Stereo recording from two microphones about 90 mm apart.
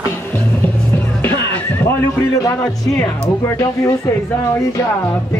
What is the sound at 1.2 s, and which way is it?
Music, 20° left (ahead or behind).